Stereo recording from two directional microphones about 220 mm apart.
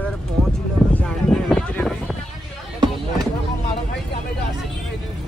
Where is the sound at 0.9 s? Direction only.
Centre (ahead or behind).